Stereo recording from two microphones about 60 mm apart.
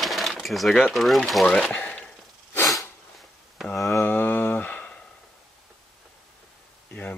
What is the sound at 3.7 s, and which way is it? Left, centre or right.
Mantra, centre.